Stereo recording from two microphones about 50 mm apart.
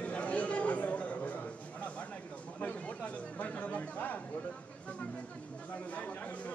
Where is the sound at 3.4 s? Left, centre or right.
Left.